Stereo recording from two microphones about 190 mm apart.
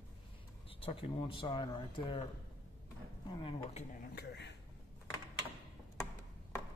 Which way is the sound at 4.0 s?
60° left (ahead or behind).